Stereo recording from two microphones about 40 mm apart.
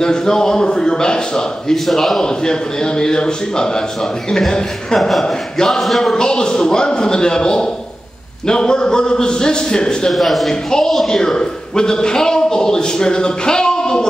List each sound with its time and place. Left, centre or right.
0.0 s a man's voice: centre
1.9 s speech: centre
2.2 s a man's voice: centre
6.1 s a man's voice: centre
10.1 s speech: centre
10.5 s a man's voice: centre